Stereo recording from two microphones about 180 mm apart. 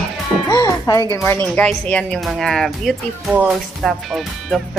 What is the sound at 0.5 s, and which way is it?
A child's voice, 20° left (ahead or behind).